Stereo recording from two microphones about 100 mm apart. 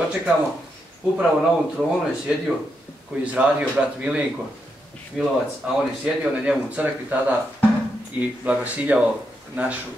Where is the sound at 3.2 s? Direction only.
10° right (ahead or behind).